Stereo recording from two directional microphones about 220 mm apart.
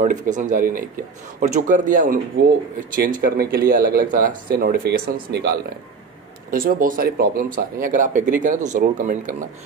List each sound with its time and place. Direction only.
0.0 s speech: 35° right (ahead or behind)